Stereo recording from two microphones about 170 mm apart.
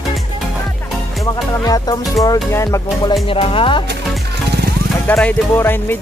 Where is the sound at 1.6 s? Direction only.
20° left (ahead or behind).